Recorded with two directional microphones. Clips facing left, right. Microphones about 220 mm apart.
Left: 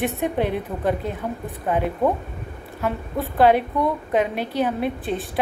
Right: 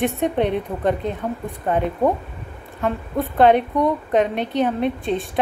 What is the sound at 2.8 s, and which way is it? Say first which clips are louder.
A woman's voice: right 3 dB; 5° left (ahead or behind).